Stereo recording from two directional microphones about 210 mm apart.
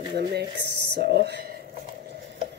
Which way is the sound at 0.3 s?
50° right (ahead or behind).